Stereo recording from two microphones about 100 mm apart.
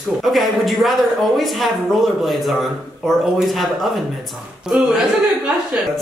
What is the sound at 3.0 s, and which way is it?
Speech, centre (ahead or behind).